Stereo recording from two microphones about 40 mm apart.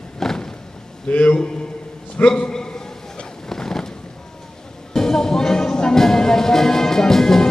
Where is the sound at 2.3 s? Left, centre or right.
Left.